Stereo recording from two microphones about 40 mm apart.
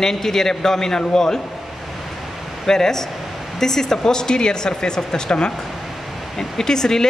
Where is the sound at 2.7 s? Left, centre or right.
Centre.